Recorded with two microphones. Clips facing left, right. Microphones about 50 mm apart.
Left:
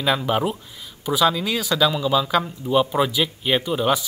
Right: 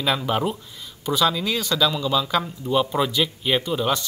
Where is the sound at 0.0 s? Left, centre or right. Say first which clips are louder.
Left 2 dB; centre.